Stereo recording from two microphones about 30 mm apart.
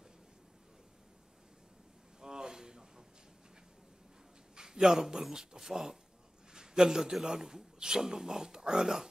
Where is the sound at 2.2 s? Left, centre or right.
Right.